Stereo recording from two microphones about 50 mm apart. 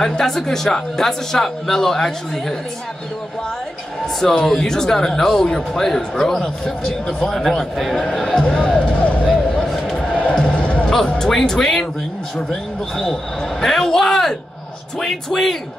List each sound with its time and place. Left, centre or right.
0.0 s speech: centre
4.2 s speech: centre
7.3 s a man's voice: centre
8.0 s speech: centre
8.7 s a sound: left
9.9 s music: left
11.1 s speech: centre